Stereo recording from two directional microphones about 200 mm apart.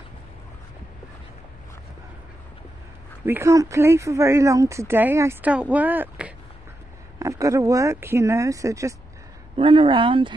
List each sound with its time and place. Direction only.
3.3 s speech: 15° right (ahead or behind)
9.6 s speech: 25° right (ahead or behind)